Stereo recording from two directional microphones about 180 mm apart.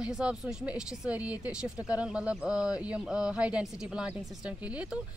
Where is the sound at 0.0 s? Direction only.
5° right (ahead or behind).